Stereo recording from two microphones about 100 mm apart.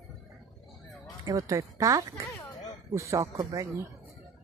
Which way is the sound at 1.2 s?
35° right (ahead or behind).